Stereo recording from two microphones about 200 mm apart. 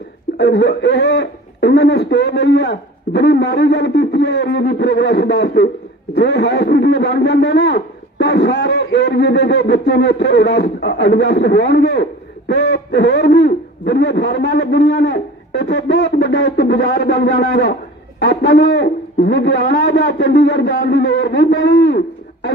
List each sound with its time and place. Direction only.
0.4 s a man's voice: 55° left (ahead or behind)
16.5 s a man's voice: 55° left (ahead or behind)